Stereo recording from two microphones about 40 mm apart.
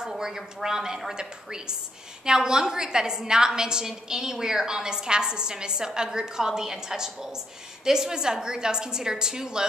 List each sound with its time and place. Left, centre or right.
0.2 s a woman's voice: centre